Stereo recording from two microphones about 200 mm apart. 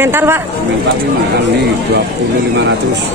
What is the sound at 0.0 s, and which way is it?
Speech, 10° right (ahead or behind).